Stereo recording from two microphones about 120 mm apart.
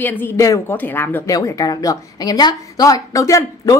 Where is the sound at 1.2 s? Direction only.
30° left (ahead or behind).